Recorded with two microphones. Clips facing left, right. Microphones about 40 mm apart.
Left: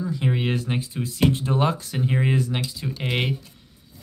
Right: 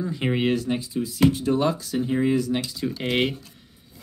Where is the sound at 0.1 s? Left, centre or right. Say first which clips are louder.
Left 1 dB; centre.